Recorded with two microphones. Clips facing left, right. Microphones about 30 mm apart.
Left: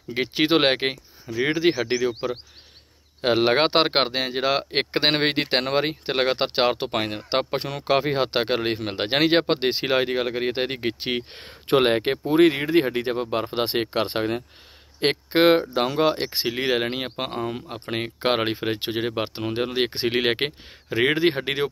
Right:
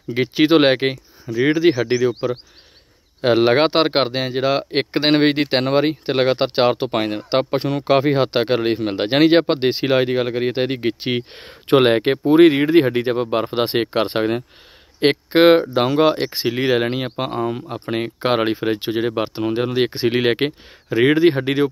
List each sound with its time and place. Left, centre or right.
0.1 s speech: centre
1.3 s speech: centre
1.6 s speech: centre
3.2 s speech: centre
3.7 s speech: centre
11.6 s speech: right
16.4 s speech: centre
17.9 s speech: centre